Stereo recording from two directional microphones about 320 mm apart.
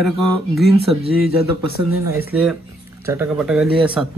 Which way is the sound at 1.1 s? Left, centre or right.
Left.